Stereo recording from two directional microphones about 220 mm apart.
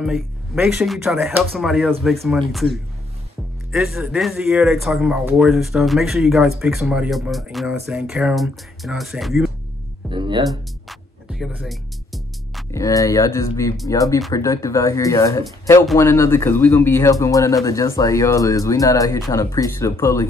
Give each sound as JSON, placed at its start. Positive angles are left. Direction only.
{"t": 0.0, "sound": "speech", "side_deg": 0}
{"t": 10.0, "sound": "music", "side_deg": -20}
{"t": 10.9, "sound": "music", "side_deg": 0}
{"t": 12.7, "sound": "speech", "side_deg": 15}